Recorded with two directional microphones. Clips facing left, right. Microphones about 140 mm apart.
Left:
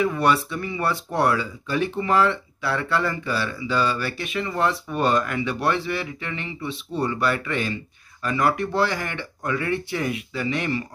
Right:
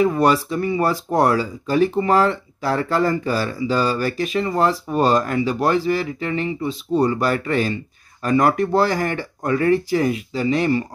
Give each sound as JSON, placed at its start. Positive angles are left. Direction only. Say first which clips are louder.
{"t": 0.0, "sound": "speech", "louder": "right 4 dB", "side_deg": -35}